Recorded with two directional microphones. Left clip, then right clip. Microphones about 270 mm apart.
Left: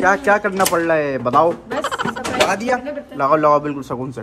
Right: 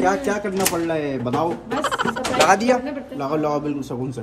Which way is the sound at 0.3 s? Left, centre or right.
Centre.